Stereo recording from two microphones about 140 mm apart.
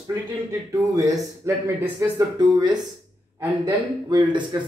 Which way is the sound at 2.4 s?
30° right (ahead or behind).